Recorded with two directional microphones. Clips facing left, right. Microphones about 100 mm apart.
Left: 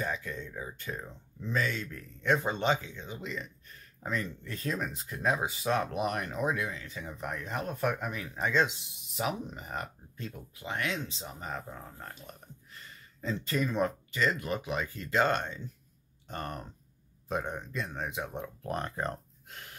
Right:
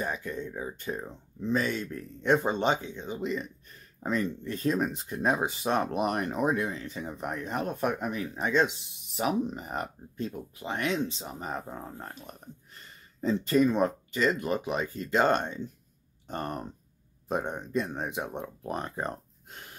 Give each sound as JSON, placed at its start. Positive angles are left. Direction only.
{"t": 0.0, "sound": "speech", "side_deg": -20}